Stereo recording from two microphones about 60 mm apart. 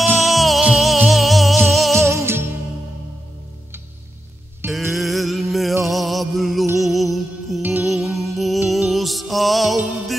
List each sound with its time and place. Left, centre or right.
0.2 s music: centre
2.0 s music: right
4.6 s music: centre